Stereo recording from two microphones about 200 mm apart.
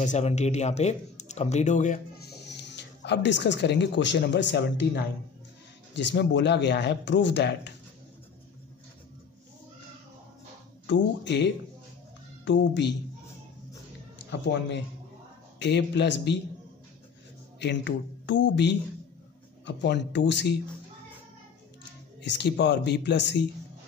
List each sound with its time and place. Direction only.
0.0 s speech: 35° left (ahead or behind)
2.4 s speech: 60° left (ahead or behind)
10.9 s speech: 60° left (ahead or behind)
14.4 s speech: 60° left (ahead or behind)
17.6 s speech: 60° left (ahead or behind)
22.2 s speech: 60° left (ahead or behind)